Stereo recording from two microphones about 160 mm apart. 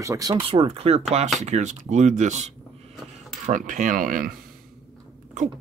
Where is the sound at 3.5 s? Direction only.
55° right (ahead or behind).